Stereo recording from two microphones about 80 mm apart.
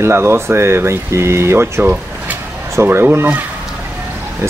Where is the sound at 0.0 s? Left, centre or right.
Right.